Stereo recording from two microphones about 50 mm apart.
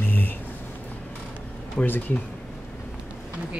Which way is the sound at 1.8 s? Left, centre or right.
Left.